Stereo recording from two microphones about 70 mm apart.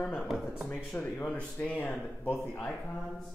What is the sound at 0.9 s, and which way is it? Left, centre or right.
Speech, centre.